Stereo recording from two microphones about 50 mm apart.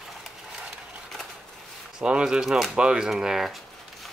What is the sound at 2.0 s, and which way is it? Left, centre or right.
Speech, centre.